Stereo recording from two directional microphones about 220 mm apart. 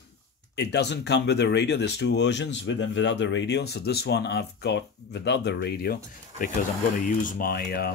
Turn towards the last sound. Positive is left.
turn(degrees=40)  # may be behind; listen again after turning